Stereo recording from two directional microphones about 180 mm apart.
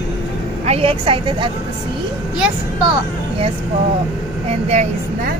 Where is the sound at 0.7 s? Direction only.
30° right (ahead or behind).